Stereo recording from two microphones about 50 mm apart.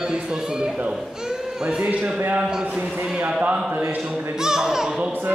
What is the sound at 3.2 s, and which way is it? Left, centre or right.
Speech, right.